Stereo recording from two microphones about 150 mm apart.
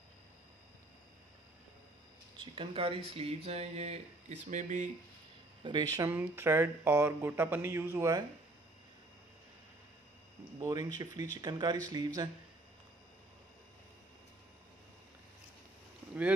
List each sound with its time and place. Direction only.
2.3 s speech: 35° right (ahead or behind); by 4.8 s 55° right (ahead or behind)
5.6 s speech: 30° right (ahead or behind)
6.0 s speech: 15° right (ahead or behind)
10.6 s speech: 25° right (ahead or behind)